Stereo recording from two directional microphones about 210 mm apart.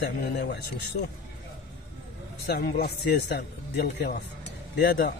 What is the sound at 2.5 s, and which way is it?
Speech, 50° left (ahead or behind).